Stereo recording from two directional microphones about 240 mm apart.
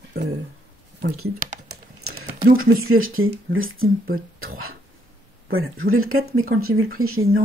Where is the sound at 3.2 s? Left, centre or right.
Right.